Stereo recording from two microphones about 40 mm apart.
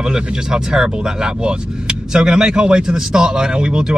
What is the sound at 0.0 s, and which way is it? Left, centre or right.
Speech, centre.